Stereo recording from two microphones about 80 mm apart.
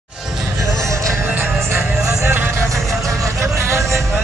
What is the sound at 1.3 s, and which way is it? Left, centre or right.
Music, right.